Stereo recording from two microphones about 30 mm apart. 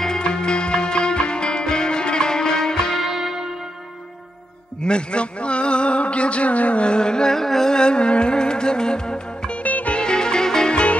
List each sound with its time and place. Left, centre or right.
0.2 s music: left
3.0 s music: centre
4.8 s a sound: left
6.9 s music: left
7.3 s music: centre
7.7 s music: left
9.6 s music: left
9.9 s music: left
10.7 s music: left